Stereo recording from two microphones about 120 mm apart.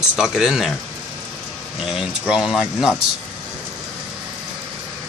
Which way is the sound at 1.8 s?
5° right (ahead or behind).